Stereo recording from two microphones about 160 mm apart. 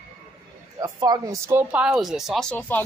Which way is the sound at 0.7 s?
25° right (ahead or behind).